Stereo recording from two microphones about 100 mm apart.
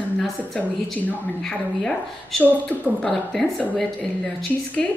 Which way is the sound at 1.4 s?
5° left (ahead or behind).